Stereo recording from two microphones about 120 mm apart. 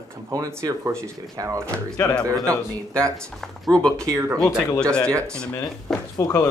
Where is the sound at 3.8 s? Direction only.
5° left (ahead or behind).